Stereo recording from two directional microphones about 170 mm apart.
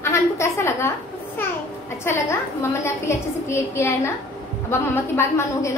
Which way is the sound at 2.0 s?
15° left (ahead or behind).